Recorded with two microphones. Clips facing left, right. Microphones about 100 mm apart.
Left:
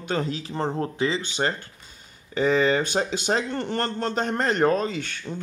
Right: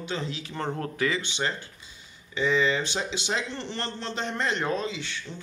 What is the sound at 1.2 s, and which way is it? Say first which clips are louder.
A man's voice: left 4 dB; 40° left (ahead or behind).